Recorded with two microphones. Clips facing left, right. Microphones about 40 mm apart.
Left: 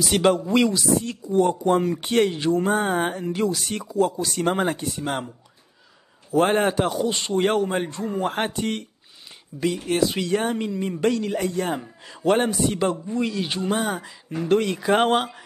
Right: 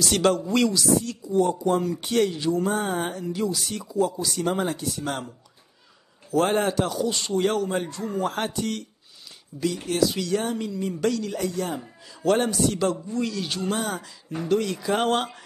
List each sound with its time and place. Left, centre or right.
0.0 s speech: centre
6.3 s speech: left
9.5 s speech: centre
9.8 s speech: left
12.3 s speech: left
14.5 s speech: left